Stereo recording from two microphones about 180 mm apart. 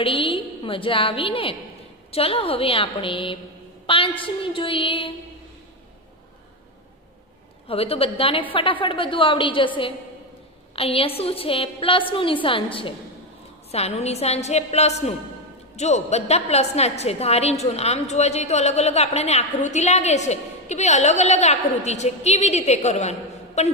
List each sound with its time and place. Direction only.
0.0 s a woman's voice: 30° left (ahead or behind)
7.6 s a woman's voice: 35° left (ahead or behind)
10.8 s a woman's voice: 30° left (ahead or behind)